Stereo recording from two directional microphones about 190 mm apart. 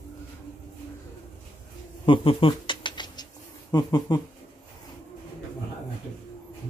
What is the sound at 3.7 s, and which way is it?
Speech, 20° left (ahead or behind).